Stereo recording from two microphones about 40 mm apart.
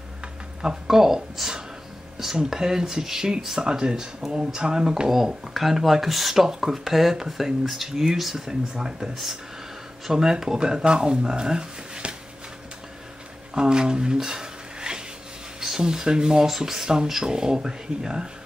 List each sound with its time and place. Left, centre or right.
0.6 s speech: centre
9.1 s speech: centre; by 12.2 s right
13.6 s a sound: right
15.6 s speech: centre
16.4 s speech: centre